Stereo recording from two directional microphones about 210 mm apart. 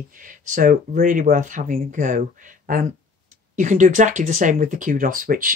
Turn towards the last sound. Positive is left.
turn(degrees=-40)  # may be behind; listen again after turning